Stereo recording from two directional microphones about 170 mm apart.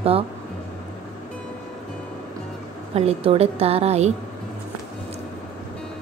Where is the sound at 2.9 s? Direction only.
35° right (ahead or behind).